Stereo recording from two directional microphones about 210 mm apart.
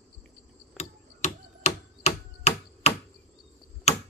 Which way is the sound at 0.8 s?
35° left (ahead or behind).